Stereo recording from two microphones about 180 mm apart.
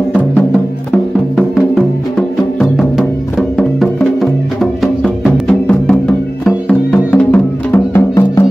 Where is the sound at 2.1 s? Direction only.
5° left (ahead or behind).